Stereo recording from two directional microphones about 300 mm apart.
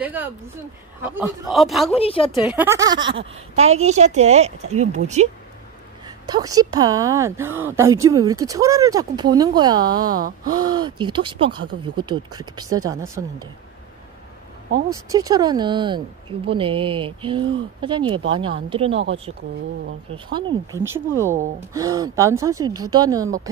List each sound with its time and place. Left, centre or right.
0.0 s speech: centre
2.0 s a woman's voice: centre
2.4 s a woman's voice: centre
14.9 s a woman's voice: centre
20.1 s a woman's voice: centre